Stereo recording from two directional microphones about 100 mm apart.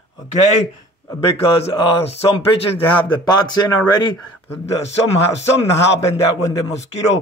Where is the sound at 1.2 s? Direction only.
80° left.